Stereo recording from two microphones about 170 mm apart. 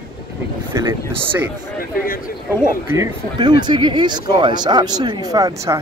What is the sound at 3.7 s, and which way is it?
Speech, 25° right (ahead or behind).